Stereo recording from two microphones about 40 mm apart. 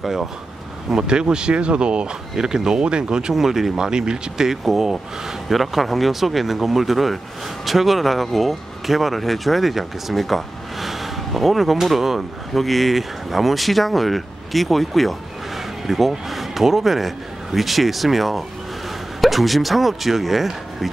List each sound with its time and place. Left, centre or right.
0.0 s speech: centre
0.9 s speech: centre
3.3 s speech: centre
4.5 s speech: centre